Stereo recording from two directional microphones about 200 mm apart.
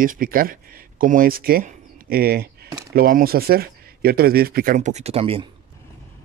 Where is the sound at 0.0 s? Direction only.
45° right (ahead or behind); by 5.5 s 25° right (ahead or behind).